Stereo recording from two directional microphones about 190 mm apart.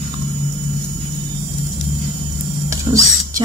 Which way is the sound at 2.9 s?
20° right (ahead or behind).